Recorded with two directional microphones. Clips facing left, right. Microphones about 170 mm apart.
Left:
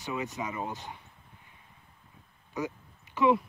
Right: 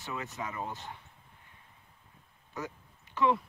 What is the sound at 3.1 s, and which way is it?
Speech, 15° left (ahead or behind).